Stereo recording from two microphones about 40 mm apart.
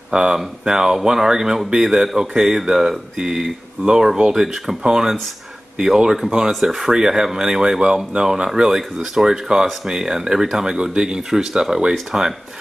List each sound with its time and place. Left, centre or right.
0.1 s speech: right